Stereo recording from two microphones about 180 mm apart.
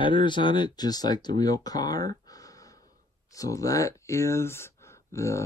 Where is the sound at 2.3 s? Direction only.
20° left (ahead or behind).